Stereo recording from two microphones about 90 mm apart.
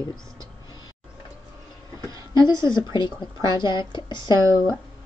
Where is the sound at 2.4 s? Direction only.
60° left (ahead or behind).